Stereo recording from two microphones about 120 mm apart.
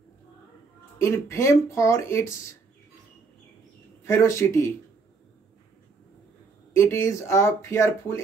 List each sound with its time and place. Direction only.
0.9 s speech: 25° left (ahead or behind)
4.0 s speech: 25° left (ahead or behind)
6.7 s speech: 20° left (ahead or behind)